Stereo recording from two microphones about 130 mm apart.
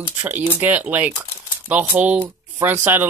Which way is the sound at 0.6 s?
15° right (ahead or behind).